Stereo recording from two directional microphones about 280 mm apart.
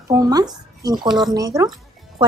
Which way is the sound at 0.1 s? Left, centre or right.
Centre.